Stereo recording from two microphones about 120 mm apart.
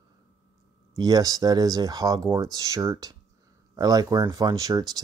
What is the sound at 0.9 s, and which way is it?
Speech, 35° right (ahead or behind).